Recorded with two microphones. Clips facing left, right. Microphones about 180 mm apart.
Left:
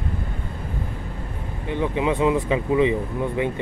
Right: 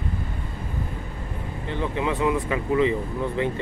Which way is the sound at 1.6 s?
15° left (ahead or behind).